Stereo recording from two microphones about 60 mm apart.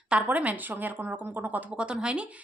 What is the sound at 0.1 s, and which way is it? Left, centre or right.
Speech, right.